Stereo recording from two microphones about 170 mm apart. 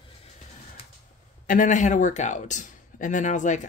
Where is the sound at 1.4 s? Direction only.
50° left (ahead or behind).